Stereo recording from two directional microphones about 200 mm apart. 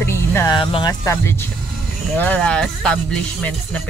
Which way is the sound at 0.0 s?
10° left (ahead or behind).